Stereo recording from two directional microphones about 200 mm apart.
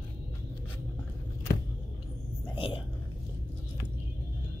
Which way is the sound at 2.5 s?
25° left (ahead or behind).